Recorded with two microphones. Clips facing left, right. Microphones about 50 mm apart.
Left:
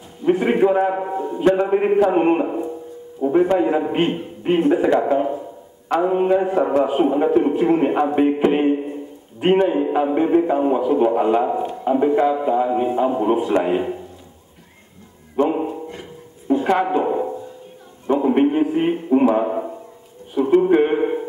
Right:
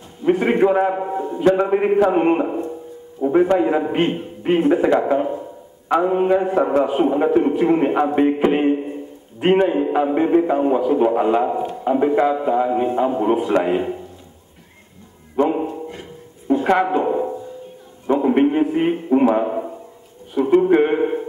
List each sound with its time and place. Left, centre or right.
0.2 s a man's voice: centre
15.3 s dog: centre
16.6 s speech: centre